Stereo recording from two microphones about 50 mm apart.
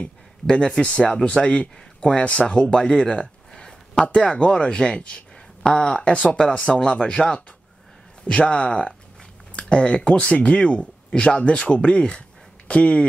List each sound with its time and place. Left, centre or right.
0.0 s speech: centre